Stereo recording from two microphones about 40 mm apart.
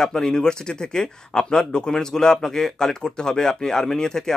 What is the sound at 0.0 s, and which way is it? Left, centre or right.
Speech, centre.